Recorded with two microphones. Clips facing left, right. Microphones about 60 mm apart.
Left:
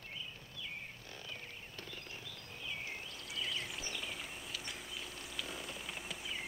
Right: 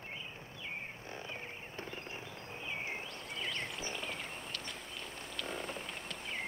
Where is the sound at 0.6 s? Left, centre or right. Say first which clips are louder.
Right 5 dB; right.